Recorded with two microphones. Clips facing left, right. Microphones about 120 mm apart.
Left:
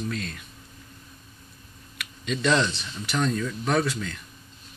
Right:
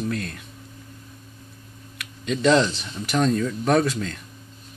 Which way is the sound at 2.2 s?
25° right (ahead or behind).